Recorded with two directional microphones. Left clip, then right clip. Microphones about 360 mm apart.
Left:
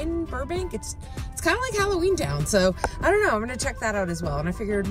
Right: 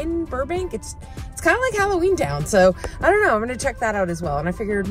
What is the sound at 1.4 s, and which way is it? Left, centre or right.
Speech, centre.